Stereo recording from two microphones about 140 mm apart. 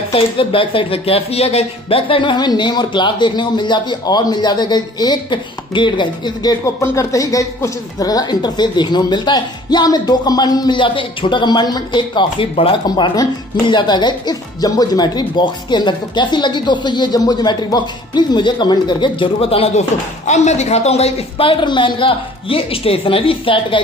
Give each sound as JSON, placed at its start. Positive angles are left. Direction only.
{"t": 0.1, "sound": "speech", "side_deg": 40}
{"t": 20.2, "sound": "speech", "side_deg": 55}